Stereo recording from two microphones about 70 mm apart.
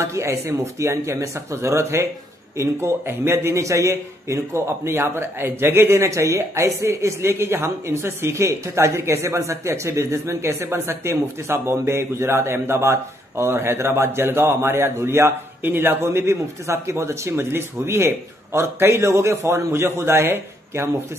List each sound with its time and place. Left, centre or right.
0.0 s a man's voice: right